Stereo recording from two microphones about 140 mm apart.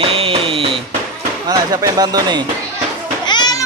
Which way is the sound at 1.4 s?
25° right (ahead or behind).